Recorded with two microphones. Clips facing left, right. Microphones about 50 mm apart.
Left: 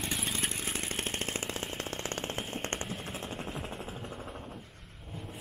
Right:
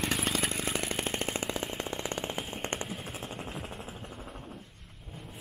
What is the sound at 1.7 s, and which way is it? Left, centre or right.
Jackhammer, centre.